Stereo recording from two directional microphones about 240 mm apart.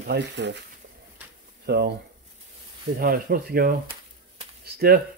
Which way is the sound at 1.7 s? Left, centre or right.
Right.